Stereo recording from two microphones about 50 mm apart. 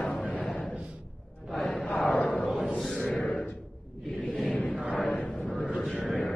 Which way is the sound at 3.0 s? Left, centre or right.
Centre.